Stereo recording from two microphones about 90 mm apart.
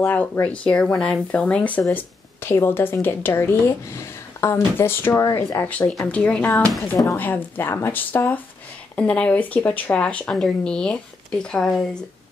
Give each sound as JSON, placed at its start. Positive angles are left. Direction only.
{"t": 0.0, "sound": "speech", "side_deg": 20}
{"t": 1.8, "sound": "speech", "side_deg": 25}
{"t": 5.7, "sound": "speech", "side_deg": 15}